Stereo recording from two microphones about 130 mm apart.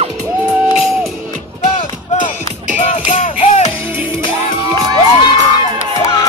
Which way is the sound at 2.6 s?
70° left (ahead or behind).